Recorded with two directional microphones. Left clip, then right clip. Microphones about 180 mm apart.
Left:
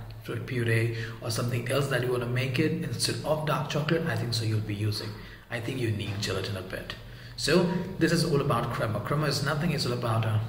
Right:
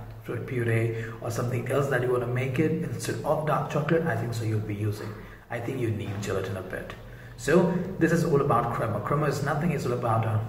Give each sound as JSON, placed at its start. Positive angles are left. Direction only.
{"t": 0.3, "sound": "a man's voice", "side_deg": 30}
{"t": 5.5, "sound": "a man's voice", "side_deg": 30}